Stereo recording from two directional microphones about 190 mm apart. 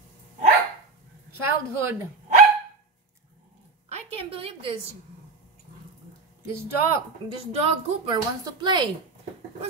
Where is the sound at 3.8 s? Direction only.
35° right (ahead or behind).